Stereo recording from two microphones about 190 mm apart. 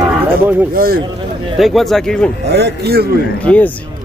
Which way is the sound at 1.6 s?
Centre (ahead or behind).